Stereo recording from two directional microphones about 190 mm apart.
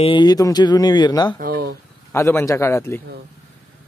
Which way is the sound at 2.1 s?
15° left (ahead or behind).